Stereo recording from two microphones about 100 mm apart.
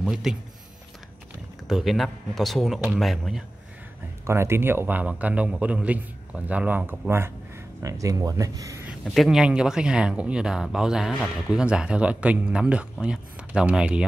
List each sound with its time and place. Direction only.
0.0 s speech: 5° right (ahead or behind)
1.7 s speech: centre (ahead or behind)
4.3 s speech: 25° right (ahead or behind)
9.0 s speech: centre (ahead or behind)